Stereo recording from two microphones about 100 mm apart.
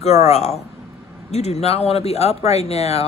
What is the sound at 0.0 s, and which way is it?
Speech, 90° left.